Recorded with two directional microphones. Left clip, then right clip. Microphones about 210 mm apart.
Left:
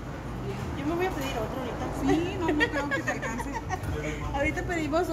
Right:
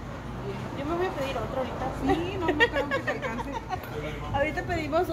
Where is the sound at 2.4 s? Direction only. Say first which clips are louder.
Right 4 dB; 30° right (ahead or behind).